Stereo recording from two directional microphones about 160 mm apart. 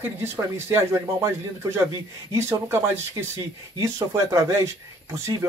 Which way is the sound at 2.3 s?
15° right (ahead or behind).